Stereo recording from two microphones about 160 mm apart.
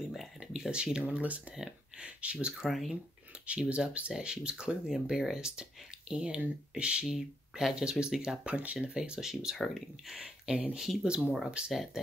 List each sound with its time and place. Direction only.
0.1 s speech: centre (ahead or behind)